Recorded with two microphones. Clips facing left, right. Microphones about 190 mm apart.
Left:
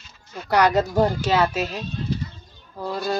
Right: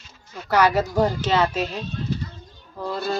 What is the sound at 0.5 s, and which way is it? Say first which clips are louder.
Speech: left 1 dB; 15° left (ahead or behind).